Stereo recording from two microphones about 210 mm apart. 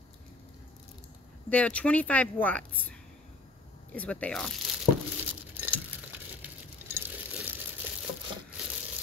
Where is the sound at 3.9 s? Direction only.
5° left (ahead or behind).